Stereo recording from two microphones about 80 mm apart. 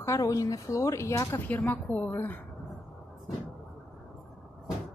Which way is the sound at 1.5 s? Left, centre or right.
Centre.